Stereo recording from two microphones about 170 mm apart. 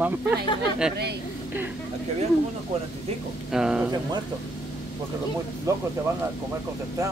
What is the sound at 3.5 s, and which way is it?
Speech, 5° right (ahead or behind).